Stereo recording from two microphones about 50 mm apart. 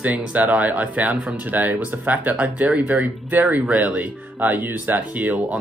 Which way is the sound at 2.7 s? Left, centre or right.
Right.